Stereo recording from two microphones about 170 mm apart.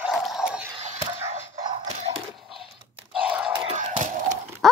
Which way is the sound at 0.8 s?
40° right (ahead or behind).